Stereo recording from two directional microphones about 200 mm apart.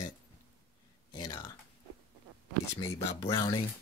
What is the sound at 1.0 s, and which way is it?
Speech, 20° left (ahead or behind).